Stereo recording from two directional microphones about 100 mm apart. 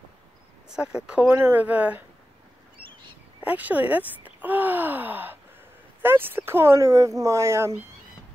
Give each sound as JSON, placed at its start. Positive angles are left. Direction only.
{"t": 0.7, "sound": "speech", "side_deg": -10}
{"t": 3.4, "sound": "speech", "side_deg": -15}